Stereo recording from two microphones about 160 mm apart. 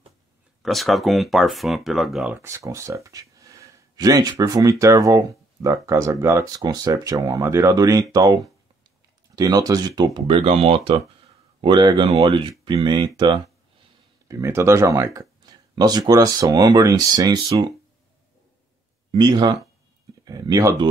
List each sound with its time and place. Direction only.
0.6 s speech: centre (ahead or behind)
2.3 s speech: 15° right (ahead or behind)
19.1 s speech: 25° right (ahead or behind)